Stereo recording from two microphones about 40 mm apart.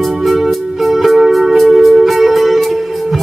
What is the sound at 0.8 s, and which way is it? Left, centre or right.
Music, centre.